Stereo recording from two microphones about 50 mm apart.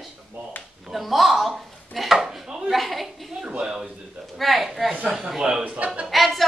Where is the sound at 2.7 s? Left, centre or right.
Centre.